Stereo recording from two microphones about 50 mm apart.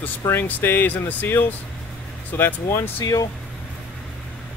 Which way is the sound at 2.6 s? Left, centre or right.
Left.